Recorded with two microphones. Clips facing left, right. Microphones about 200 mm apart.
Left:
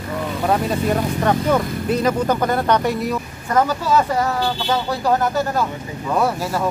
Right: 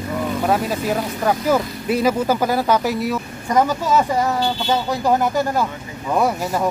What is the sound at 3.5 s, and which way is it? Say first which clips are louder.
Speech: even; 15° right (ahead or behind).